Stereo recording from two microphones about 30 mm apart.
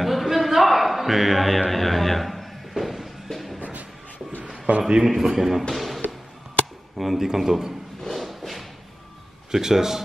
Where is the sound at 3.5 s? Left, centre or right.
Right.